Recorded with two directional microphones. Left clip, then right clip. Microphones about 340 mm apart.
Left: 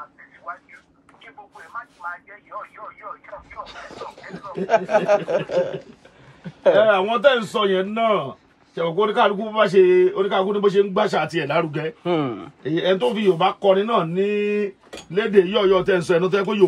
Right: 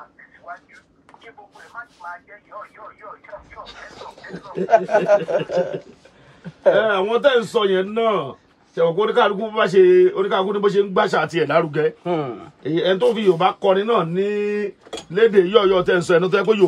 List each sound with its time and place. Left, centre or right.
3.7 s a man's voice: centre
4.7 s speech: left
6.9 s a man's voice: centre
12.0 s speech: left
12.6 s a man's voice: centre